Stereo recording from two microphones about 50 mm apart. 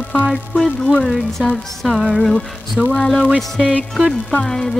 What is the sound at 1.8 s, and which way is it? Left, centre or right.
Speech, centre.